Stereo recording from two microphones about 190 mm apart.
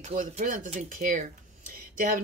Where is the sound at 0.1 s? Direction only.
45° right (ahead or behind).